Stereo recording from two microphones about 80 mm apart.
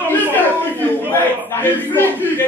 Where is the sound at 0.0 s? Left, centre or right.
Left.